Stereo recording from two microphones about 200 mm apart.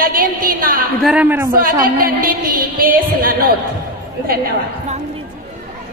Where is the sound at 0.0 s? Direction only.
45° right (ahead or behind).